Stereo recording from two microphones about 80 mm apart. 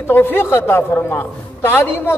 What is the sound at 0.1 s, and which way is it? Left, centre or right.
A man's voice, left.